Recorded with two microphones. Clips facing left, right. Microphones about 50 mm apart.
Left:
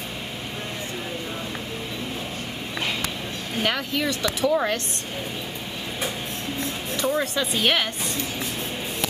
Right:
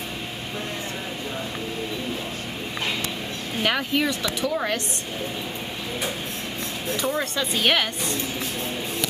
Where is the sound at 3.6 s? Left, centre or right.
Centre.